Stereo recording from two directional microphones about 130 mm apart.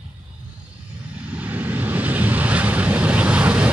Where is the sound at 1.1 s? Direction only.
10° right (ahead or behind).